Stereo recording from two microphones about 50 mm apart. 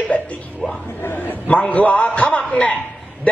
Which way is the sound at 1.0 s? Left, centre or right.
Left.